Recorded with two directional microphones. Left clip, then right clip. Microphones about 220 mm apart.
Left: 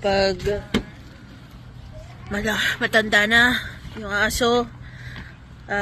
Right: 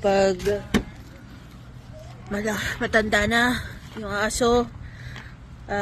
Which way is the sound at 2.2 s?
5° right (ahead or behind).